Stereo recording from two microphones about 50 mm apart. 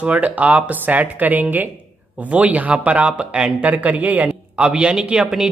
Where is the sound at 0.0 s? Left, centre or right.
Right; by 3.5 s centre.